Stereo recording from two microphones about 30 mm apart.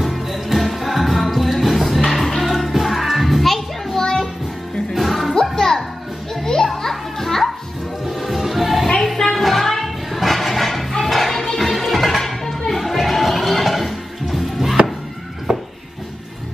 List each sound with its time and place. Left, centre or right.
0.0 s music: centre
3.9 s music: left
4.9 s music: centre
5.6 s music: centre
6.4 s children playing: left
6.7 s children playing: centre
8.0 s music: centre
15.5 s a sound: right